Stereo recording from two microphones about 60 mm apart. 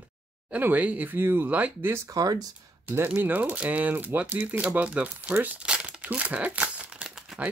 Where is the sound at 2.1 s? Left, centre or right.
Right.